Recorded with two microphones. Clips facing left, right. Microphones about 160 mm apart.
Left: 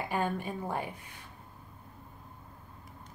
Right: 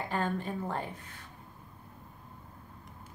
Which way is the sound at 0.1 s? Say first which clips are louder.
Even; 10° left (ahead or behind).